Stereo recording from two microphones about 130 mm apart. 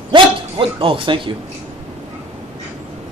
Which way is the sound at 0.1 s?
40° right (ahead or behind).